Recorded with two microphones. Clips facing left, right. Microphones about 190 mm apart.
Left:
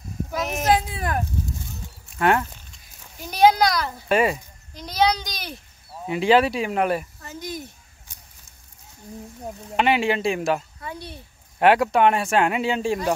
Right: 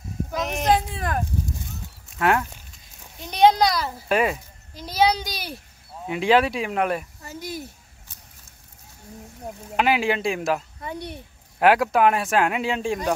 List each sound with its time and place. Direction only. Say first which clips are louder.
0.3 s a sound: even; 5° left (ahead or behind)
2.1 s a child's voice: left 1 dB; centre (ahead or behind)
9.8 s a child's voice: left 1 dB; centre (ahead or behind)
10.8 s speech: right 3 dB; 20° right (ahead or behind)
11.6 s a child's voice: left 1 dB; centre (ahead or behind)